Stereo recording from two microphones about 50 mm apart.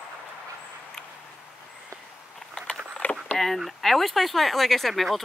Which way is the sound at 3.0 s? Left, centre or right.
Left.